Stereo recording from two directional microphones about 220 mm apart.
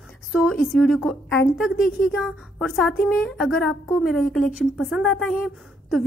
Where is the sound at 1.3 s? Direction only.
50° left (ahead or behind).